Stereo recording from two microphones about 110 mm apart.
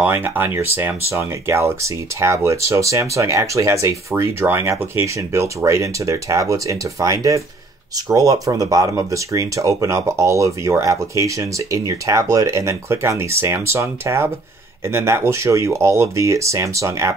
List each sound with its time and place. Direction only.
0.0 s speech: 20° right (ahead or behind)